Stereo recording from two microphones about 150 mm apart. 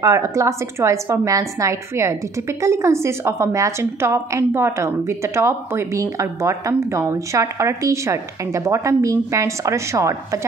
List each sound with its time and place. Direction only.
0.0 s a woman's voice: 20° right (ahead or behind)